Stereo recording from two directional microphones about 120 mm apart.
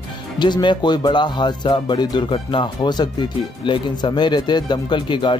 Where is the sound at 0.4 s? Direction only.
40° left (ahead or behind).